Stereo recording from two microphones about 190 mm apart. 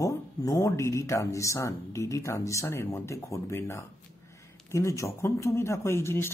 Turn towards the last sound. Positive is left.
turn(degrees=15)  # may be behind; listen again after turning